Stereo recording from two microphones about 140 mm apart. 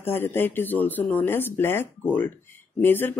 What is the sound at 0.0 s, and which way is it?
Speech, 15° left (ahead or behind).